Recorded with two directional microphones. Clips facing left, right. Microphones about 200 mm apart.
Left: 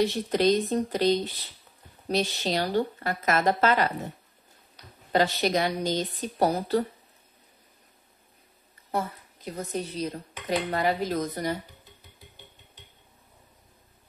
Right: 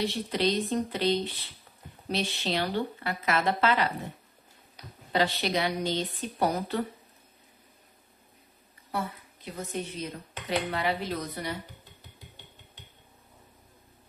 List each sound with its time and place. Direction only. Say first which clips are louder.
0.0 s speech: left 5 dB; 45° left (ahead or behind)
5.1 s speech: left 3 dB; 45° left (ahead or behind)
8.9 s a woman's voice: left 3 dB; 40° left (ahead or behind)
10.4 s dishes: left 3 dB; 45° left (ahead or behind)